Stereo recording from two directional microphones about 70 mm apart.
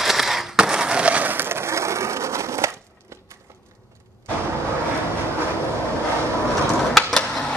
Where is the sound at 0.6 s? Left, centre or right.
Centre; by 2.7 s right.